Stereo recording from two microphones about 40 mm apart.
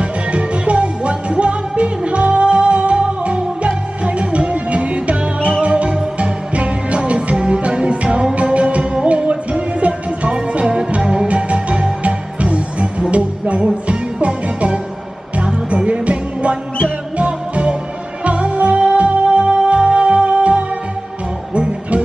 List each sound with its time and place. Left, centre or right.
0.0 s music: right